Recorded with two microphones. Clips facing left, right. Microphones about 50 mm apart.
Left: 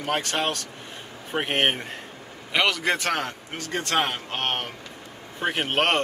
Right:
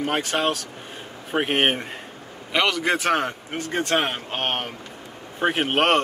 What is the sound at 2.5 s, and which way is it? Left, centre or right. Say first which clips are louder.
A man's voice: right 1 dB; centre.